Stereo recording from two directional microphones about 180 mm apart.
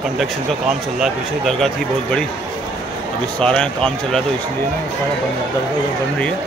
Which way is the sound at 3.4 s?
5° left (ahead or behind).